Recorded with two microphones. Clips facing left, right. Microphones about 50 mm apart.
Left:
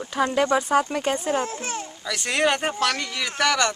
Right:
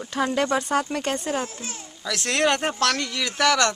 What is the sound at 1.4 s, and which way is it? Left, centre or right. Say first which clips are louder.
Speech: left 5 dB; left.